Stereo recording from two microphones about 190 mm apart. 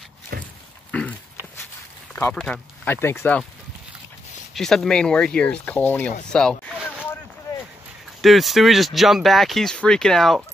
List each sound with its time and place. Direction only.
0.3 s dog: 55° right (ahead or behind)
0.9 s a sound: 5° left (ahead or behind)
2.3 s speech: 5° left (ahead or behind)
4.6 s speech: centre (ahead or behind)
8.2 s speech: centre (ahead or behind)